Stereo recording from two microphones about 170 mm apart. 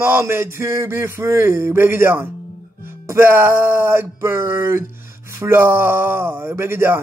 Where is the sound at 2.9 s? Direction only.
15° right (ahead or behind).